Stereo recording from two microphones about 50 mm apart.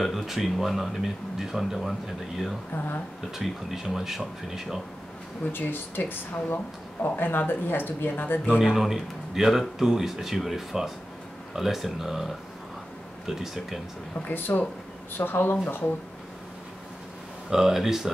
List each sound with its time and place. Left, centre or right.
0.0 s speech: centre
3.3 s speech: centre
5.4 s speech: left
8.5 s speech: centre
14.3 s speech: left
17.5 s speech: centre